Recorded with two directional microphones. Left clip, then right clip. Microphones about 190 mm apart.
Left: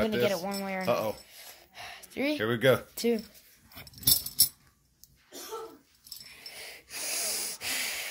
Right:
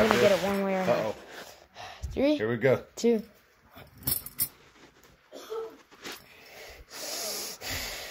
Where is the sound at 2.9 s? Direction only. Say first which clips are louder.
Right 3 dB; 35° right (ahead or behind).